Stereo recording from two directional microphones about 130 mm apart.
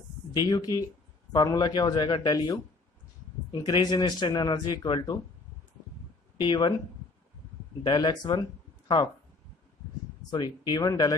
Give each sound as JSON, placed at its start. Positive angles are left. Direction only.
{"t": 0.3, "sound": "speech", "side_deg": 30}
{"t": 3.6, "sound": "speech", "side_deg": 30}
{"t": 6.4, "sound": "speech", "side_deg": 35}
{"t": 7.8, "sound": "speech", "side_deg": 35}
{"t": 10.3, "sound": "speech", "side_deg": 35}